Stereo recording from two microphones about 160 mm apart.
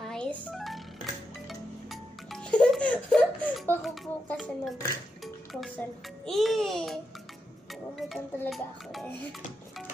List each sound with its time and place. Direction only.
0.0 s music: 5° left (ahead or behind)
3.8 s speech: centre (ahead or behind)
5.2 s music: centre (ahead or behind)
6.2 s speech: centre (ahead or behind)
8.0 s speech: centre (ahead or behind)